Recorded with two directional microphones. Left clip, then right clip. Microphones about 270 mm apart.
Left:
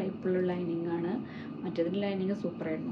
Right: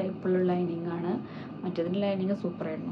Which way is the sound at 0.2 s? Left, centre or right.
Centre.